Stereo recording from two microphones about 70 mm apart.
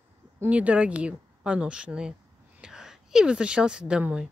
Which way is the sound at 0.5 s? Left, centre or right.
Centre.